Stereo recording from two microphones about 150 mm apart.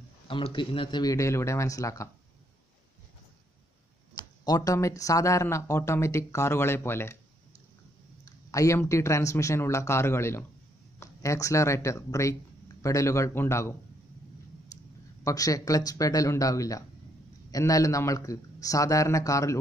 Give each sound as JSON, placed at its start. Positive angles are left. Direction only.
{"t": 0.3, "sound": "speech", "side_deg": 35}
{"t": 4.2, "sound": "speech", "side_deg": 25}
{"t": 8.3, "sound": "speech", "side_deg": 20}
{"t": 14.7, "sound": "a sound", "side_deg": 20}
{"t": 15.2, "sound": "speech", "side_deg": 25}